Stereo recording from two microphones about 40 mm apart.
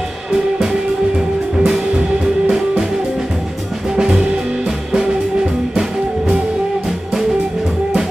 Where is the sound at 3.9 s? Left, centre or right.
Centre.